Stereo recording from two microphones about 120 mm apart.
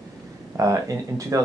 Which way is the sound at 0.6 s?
25° right (ahead or behind).